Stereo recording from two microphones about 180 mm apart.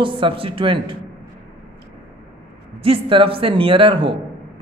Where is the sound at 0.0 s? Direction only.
30° right (ahead or behind).